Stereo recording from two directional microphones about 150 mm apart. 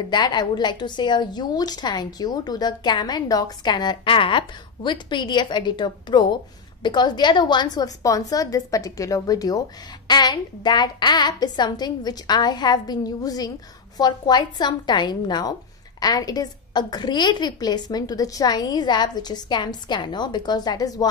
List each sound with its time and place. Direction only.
0.1 s a woman's voice: 30° left (ahead or behind)